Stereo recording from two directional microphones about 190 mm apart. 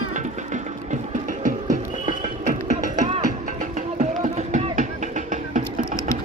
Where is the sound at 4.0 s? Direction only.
40° right (ahead or behind).